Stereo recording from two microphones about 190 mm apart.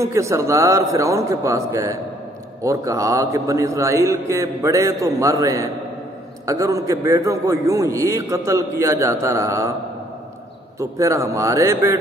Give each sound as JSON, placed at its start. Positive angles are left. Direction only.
{"t": 0.0, "sound": "a man's voice", "side_deg": -15}
{"t": 10.8, "sound": "a man's voice", "side_deg": -15}